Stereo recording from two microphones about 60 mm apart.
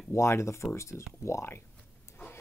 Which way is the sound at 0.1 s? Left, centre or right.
Left.